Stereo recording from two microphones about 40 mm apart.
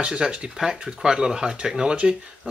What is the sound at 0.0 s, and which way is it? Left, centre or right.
Speech, right.